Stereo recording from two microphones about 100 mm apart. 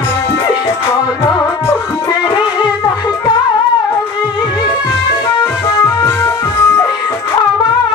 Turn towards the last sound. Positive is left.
turn(degrees=25)  # may be behind; listen again after turning